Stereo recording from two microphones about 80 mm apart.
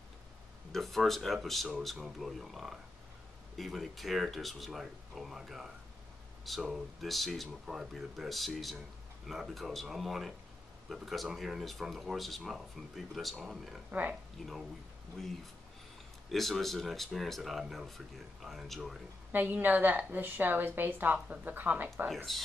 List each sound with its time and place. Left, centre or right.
0.7 s speech: centre
13.8 s a woman's voice: right
14.4 s speech: centre
16.3 s speech: centre
19.3 s a woman's voice: right
22.1 s speech: centre